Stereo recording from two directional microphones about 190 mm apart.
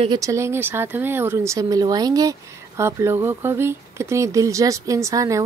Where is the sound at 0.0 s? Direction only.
20° right (ahead or behind).